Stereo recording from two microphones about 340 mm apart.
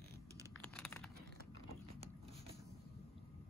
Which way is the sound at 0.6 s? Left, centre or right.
Centre.